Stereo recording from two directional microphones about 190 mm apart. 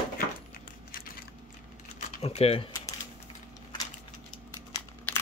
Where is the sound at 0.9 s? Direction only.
50° left (ahead or behind).